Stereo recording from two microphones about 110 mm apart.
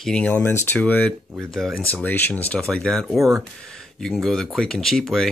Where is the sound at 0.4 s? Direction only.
20° left (ahead or behind).